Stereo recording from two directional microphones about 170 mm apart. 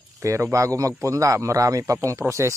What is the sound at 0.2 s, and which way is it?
A man's voice, 20° right (ahead or behind).